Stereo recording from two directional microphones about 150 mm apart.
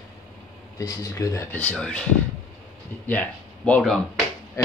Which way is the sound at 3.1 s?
10° left (ahead or behind).